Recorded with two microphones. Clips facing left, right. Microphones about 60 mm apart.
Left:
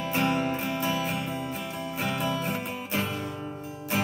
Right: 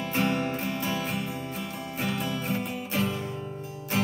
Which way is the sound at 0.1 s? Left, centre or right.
Centre.